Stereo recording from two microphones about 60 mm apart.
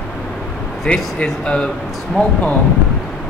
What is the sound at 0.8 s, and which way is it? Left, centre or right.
Speech, centre.